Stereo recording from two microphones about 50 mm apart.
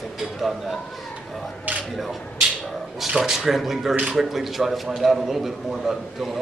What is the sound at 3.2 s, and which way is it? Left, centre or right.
A man's voice, centre.